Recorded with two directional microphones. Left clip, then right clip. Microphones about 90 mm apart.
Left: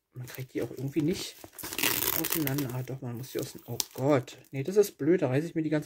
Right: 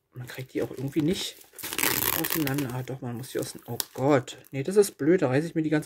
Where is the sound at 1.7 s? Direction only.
10° right (ahead or behind).